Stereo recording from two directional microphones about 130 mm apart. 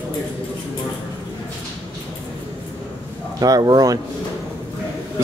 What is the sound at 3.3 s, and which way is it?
Speech, 30° right (ahead or behind).